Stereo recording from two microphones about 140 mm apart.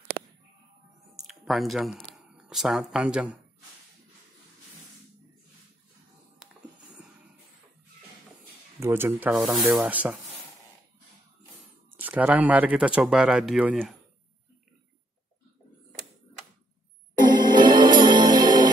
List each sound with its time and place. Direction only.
1.1 s speech: centre (ahead or behind)
6.4 s music: 5° right (ahead or behind)
8.7 s speech: 15° right (ahead or behind)
9.5 s rub: centre (ahead or behind)
9.8 s speech: 15° right (ahead or behind)
11.9 s speech: 10° right (ahead or behind)
17.4 s music: 30° right (ahead or behind)